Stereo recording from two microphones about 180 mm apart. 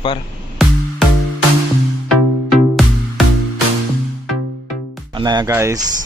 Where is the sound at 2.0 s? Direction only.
Centre (ahead or behind).